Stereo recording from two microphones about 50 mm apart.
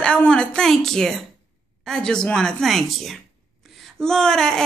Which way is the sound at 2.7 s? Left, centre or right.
Centre.